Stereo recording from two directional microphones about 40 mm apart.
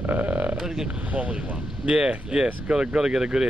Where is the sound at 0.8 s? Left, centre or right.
Right.